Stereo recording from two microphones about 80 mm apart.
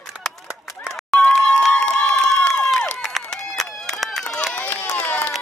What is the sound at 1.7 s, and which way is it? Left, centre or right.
Run, centre.